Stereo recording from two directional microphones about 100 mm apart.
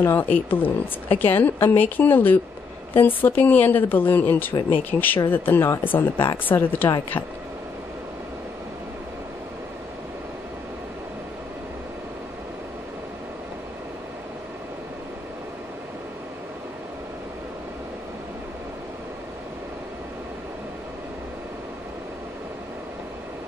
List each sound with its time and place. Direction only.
0.0 s speech: 20° left (ahead or behind)